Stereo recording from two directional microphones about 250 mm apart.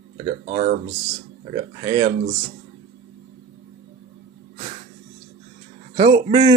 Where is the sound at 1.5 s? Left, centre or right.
Centre.